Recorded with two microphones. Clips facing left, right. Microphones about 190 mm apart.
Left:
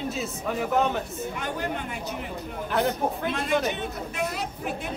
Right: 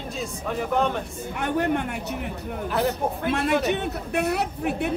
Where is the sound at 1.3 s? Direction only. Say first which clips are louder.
Right 9 dB; 65° right (ahead or behind).